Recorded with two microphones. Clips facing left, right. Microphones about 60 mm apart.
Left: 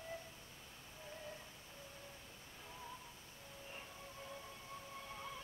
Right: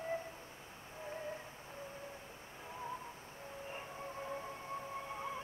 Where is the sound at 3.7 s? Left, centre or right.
Right.